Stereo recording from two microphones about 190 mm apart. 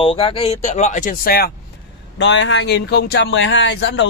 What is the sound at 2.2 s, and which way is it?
Speech, 70° left (ahead or behind).